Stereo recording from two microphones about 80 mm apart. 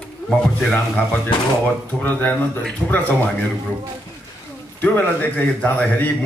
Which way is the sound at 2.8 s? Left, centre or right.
Centre.